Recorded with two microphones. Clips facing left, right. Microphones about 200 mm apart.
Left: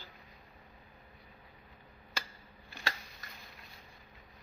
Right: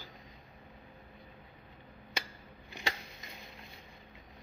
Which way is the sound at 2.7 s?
20° right (ahead or behind).